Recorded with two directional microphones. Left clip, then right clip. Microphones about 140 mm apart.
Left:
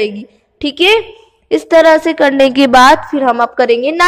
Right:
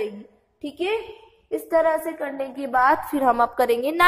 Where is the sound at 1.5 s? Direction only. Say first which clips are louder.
Left 13 dB; 65° left (ahead or behind).